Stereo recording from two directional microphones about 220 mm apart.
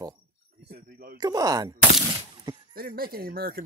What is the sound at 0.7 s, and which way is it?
Speech, 45° right (ahead or behind).